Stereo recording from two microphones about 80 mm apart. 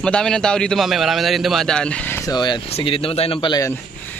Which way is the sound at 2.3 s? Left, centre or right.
Left.